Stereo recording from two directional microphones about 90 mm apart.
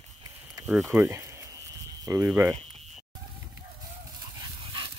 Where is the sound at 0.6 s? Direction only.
5° right (ahead or behind).